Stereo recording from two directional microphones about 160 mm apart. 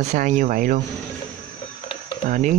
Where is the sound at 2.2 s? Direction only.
55° right (ahead or behind).